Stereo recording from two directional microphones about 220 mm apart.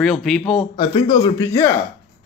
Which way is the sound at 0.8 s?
20° left (ahead or behind).